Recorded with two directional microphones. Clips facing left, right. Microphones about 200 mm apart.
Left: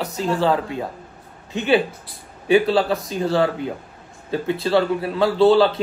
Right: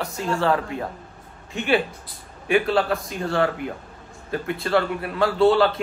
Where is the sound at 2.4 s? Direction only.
30° left (ahead or behind).